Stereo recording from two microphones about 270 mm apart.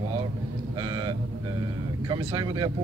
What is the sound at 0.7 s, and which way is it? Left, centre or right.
Speech, centre.